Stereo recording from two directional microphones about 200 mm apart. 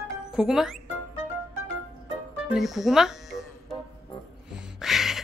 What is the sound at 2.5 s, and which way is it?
Speech, centre (ahead or behind).